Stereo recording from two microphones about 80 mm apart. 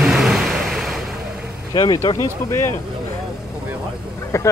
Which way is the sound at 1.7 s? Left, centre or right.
Left.